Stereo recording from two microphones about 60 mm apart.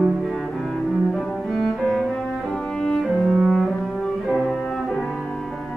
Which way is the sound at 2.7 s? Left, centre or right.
Centre.